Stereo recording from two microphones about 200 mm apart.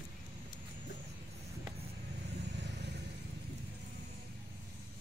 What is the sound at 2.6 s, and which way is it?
Vehicle, 60° right (ahead or behind).